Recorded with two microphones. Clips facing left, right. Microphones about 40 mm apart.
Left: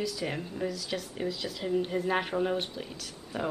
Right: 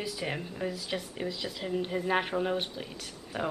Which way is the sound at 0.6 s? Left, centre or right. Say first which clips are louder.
Even; right.